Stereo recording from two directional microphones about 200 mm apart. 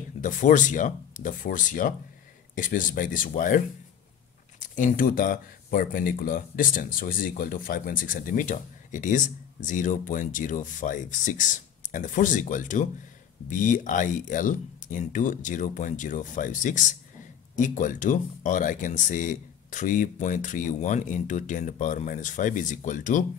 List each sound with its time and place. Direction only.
0.2 s speech: 40° left (ahead or behind)